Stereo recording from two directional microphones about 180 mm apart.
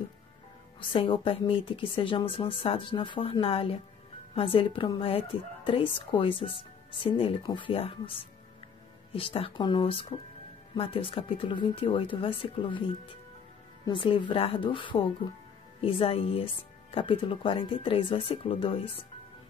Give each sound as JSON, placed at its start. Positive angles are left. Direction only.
{"t": 0.7, "sound": "speech", "side_deg": 30}
{"t": 9.1, "sound": "speech", "side_deg": 30}